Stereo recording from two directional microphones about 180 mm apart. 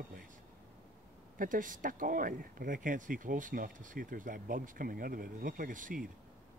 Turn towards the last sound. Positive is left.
turn(degrees=-50)  # may be behind; listen again after turning